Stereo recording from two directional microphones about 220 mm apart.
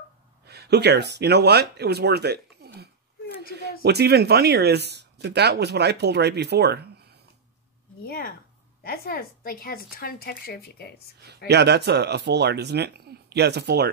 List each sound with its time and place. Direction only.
0.5 s speech: 50° right (ahead or behind)
8.0 s speech: 45° left (ahead or behind)
11.1 s speech: 50° right (ahead or behind)